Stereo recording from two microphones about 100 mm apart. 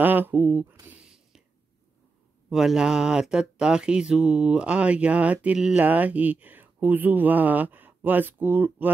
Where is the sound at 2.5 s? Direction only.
5° right (ahead or behind).